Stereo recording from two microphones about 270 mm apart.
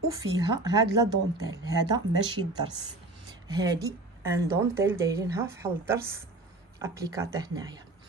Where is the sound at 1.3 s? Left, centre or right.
Centre.